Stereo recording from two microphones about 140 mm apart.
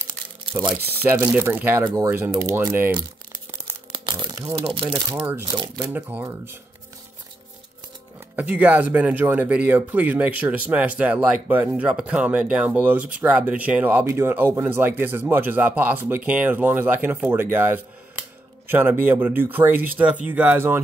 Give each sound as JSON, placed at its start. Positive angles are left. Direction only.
{"t": 1.0, "sound": "speech", "side_deg": -15}
{"t": 4.1, "sound": "crumpling", "side_deg": -30}
{"t": 4.6, "sound": "speech", "side_deg": -35}
{"t": 5.1, "sound": "speech", "side_deg": -10}
{"t": 8.4, "sound": "speech", "side_deg": -10}